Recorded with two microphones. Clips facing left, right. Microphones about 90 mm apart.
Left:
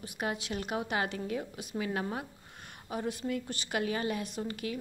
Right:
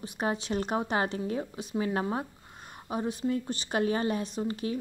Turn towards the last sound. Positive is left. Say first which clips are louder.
# right 4 dB
turn(degrees=-30)  # may be behind; listen again after turning